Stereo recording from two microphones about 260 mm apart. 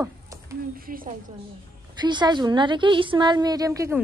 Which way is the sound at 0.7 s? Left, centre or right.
Right.